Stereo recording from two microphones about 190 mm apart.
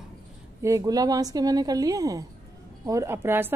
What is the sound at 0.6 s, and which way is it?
Speech, 15° right (ahead or behind).